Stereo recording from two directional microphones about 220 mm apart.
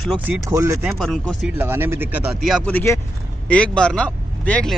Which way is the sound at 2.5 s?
5° left (ahead or behind).